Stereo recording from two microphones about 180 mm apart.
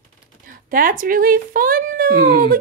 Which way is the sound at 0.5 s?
50° right (ahead or behind).